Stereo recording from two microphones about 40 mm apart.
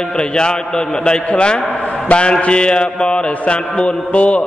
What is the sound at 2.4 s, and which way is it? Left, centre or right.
Mantra, left.